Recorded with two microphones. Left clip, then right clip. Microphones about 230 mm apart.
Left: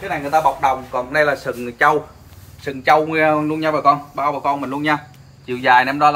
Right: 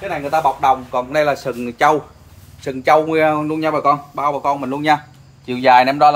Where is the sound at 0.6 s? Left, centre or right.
Right.